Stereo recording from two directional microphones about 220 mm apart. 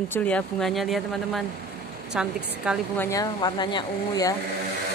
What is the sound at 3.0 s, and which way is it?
Speech, 15° left (ahead or behind).